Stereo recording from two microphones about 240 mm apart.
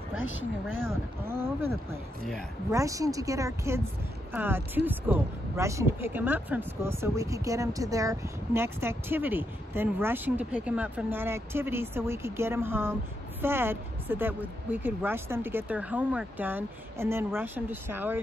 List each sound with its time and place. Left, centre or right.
0.1 s a woman's voice: left
0.8 s speech: centre
2.7 s speech: centre